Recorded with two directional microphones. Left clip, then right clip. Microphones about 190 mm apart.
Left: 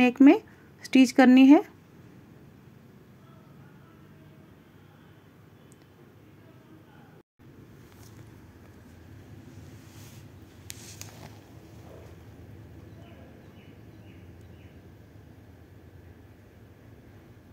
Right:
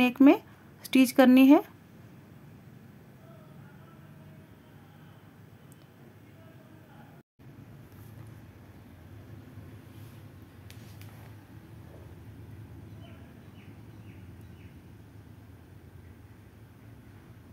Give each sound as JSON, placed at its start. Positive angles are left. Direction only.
{"t": 0.0, "sound": "speech", "side_deg": 0}